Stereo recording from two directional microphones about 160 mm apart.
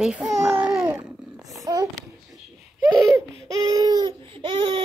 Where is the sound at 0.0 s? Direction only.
5° right (ahead or behind).